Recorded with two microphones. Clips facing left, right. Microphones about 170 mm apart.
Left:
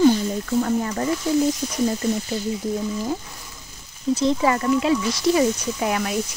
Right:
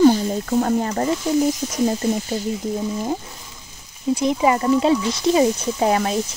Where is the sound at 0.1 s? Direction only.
40° right (ahead or behind).